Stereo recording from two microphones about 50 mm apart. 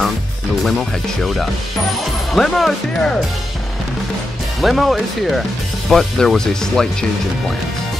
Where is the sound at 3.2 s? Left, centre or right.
Centre.